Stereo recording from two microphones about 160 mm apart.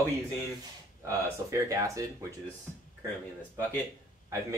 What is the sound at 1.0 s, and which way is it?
Speech, 20° right (ahead or behind).